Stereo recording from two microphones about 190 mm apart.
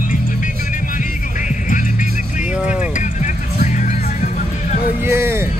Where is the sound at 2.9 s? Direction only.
40° left (ahead or behind).